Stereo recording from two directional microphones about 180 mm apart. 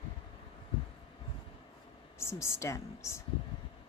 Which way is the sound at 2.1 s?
15° left (ahead or behind).